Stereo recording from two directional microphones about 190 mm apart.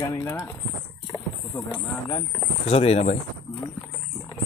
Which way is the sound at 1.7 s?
20° left (ahead or behind).